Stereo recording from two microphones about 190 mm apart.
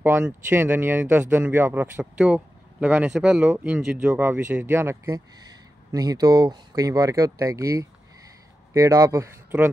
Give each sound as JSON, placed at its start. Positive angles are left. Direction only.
{"t": 0.0, "sound": "speech", "side_deg": -10}